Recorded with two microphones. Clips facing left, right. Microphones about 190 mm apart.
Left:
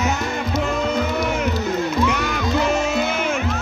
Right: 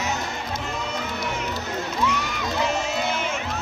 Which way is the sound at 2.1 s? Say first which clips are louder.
Left 6 dB; 60° left (ahead or behind).